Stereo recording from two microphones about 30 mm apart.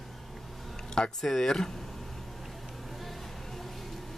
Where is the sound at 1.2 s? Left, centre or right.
Centre.